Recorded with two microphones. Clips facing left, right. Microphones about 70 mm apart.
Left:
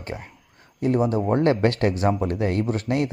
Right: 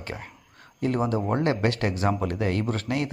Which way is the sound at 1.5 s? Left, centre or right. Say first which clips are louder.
Left 5 dB; left.